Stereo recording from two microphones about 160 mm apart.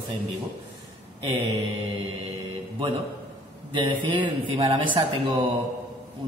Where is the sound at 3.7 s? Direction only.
30° right (ahead or behind).